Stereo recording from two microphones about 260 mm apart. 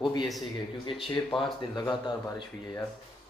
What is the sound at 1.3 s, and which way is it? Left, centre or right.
Speech, centre.